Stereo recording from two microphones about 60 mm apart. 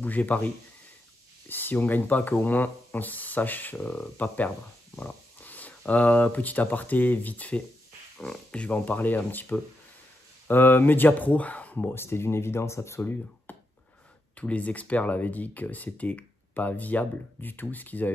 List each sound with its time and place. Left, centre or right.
0.0 s speech: left
1.5 s speech: left
11.9 s speech: left
13.5 s a sound: left
14.3 s speech: left